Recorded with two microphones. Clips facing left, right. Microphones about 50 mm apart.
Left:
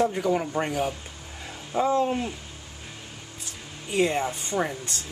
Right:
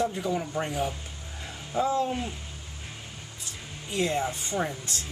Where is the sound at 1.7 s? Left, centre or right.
Left.